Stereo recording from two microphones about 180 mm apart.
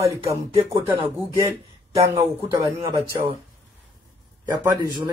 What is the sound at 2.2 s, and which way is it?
Speech, 25° right (ahead or behind).